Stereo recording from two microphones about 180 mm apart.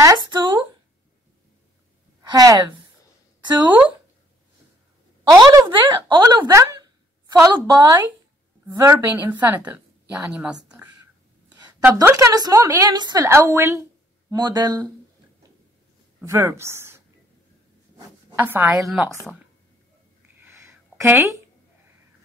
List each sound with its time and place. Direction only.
0.0 s speech: 20° right (ahead or behind)
2.3 s speech: 20° right (ahead or behind)
5.3 s a woman's voice: 20° right (ahead or behind)
16.2 s speech: 15° right (ahead or behind)
20.3 s a sound: 10° right (ahead or behind)